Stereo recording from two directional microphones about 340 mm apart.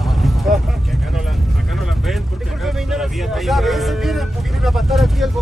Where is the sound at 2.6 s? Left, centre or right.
Centre.